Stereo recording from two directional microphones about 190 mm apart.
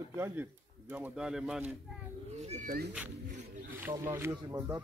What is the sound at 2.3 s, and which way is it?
Speech, 35° right (ahead or behind).